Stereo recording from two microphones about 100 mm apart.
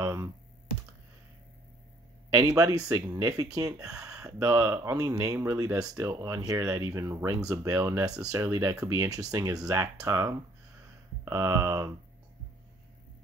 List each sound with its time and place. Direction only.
0.0 s speech: 35° right (ahead or behind)
2.4 s speech: 35° right (ahead or behind)